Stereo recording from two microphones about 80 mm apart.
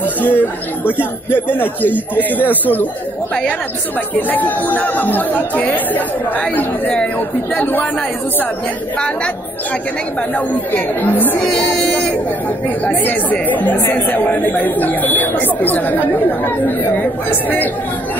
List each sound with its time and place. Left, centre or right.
0.0 s a sound: left
1.3 s speech: left
4.1 s speech: left
10.3 s speech: left
11.9 s chatter: centre
12.6 s speech: left